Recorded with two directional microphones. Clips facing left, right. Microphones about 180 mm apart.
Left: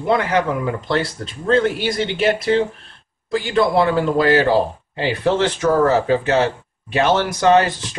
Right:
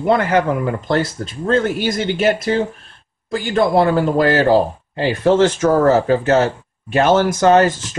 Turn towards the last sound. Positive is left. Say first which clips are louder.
# right 2 dB
turn(degrees=-45)  # may be behind; listen again after turning